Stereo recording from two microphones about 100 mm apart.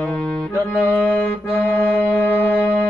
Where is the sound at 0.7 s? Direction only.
15° right (ahead or behind).